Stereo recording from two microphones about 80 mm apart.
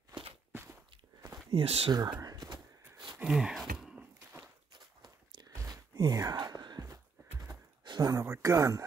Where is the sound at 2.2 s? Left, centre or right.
Right.